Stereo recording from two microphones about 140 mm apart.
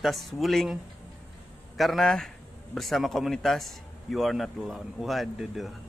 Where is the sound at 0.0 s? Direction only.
Centre (ahead or behind).